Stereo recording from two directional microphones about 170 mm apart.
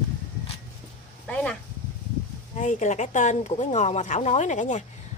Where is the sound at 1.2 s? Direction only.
5° left (ahead or behind).